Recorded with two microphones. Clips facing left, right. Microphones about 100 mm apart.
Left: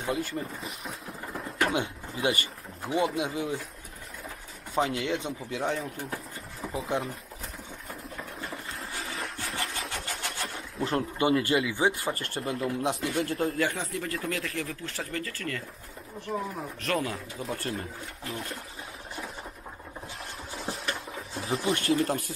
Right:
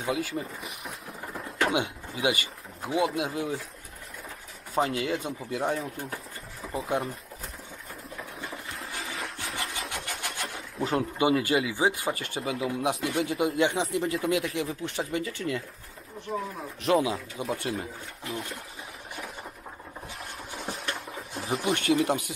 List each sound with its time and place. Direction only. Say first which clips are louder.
0.0 s speech: right 1 dB; 5° right (ahead or behind)
1.3 s pigeon: even; 10° left (ahead or behind)
1.7 s speech: right 2 dB; 15° right (ahead or behind)
2.8 s speech: right 1 dB; centre (ahead or behind)
4.7 s speech: right 1 dB; centre (ahead or behind)
8.2 s engine: right 1 dB; centre (ahead or behind)
9.9 s engine starting: even; 5° right (ahead or behind)
10.8 s speech: right 1 dB; 15° right (ahead or behind)
12.4 s speech: even; 5° right (ahead or behind)
13.6 s speech: right 4 dB; 20° right (ahead or behind)
16.3 s speech: even; 5° left (ahead or behind)
17.0 s speech: right 4 dB; 5° right (ahead or behind)
20.7 s a sound: even; centre (ahead or behind)
21.8 s speech: right 4 dB; 5° right (ahead or behind)